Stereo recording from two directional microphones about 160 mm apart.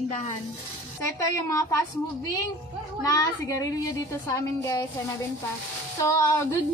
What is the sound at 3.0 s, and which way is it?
A woman's voice, 20° left (ahead or behind).